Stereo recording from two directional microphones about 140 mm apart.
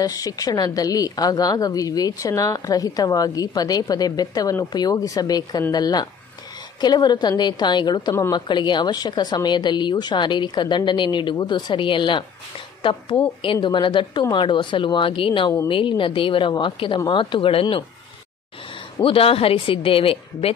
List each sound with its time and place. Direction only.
0.0 s a woman's voice: 25° left (ahead or behind)
13.4 s a woman's voice: 35° left (ahead or behind)
18.9 s a woman's voice: 40° left (ahead or behind)